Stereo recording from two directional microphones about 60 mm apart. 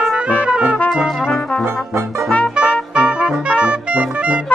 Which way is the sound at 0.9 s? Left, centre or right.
Centre.